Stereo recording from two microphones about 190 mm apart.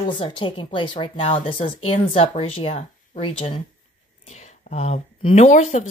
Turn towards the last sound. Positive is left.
turn(degrees=35)  # may be behind; listen again after turning